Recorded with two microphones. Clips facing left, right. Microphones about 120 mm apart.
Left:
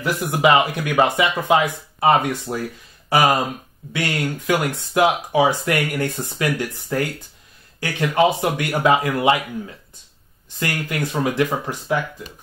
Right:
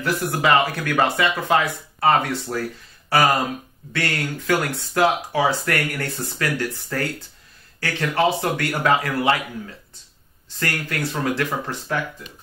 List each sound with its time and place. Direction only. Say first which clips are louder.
0.0 s speech: left 3 dB; 15° left (ahead or behind)